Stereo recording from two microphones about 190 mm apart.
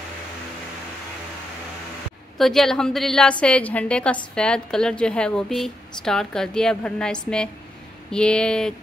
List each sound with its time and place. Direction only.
2.3 s a woman's voice: centre (ahead or behind)